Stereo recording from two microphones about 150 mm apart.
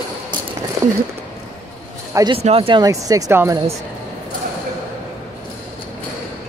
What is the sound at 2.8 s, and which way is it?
Speech, 20° right (ahead or behind).